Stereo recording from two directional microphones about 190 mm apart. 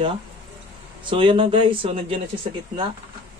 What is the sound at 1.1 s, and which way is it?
Speech, 25° right (ahead or behind).